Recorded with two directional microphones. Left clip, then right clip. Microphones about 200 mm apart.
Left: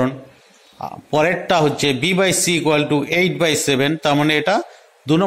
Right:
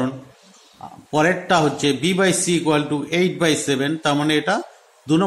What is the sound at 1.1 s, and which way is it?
A man's voice, 20° left (ahead or behind).